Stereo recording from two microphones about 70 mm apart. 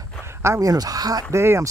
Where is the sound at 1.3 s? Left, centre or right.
Right.